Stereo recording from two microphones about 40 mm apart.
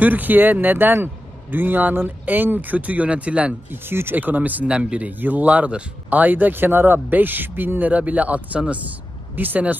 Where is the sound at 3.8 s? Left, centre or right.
Right.